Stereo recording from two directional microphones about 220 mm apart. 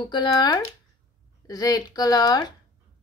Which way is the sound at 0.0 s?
20° left (ahead or behind).